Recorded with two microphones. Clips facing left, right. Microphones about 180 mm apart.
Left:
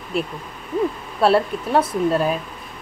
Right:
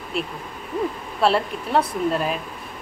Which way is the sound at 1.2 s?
Centre (ahead or behind).